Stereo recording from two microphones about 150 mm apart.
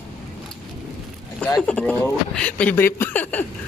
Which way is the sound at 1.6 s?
5° left (ahead or behind).